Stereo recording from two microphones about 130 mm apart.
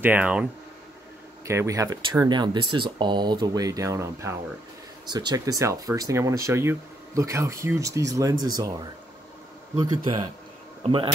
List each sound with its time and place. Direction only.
0.0 s speech: 10° right (ahead or behind)
1.4 s speech: 20° right (ahead or behind)
9.8 s a man's voice: 35° right (ahead or behind)